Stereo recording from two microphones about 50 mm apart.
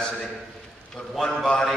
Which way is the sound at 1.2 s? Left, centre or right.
Centre.